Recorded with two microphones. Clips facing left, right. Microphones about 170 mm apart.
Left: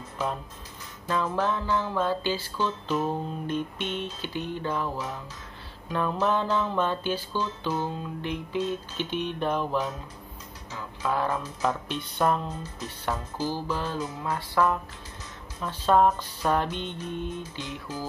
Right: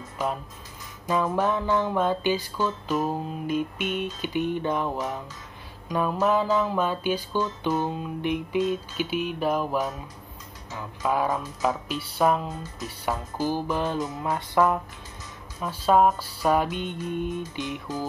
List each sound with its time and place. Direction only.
1.0 s music: 15° right (ahead or behind)
11.0 s music: 15° right (ahead or behind)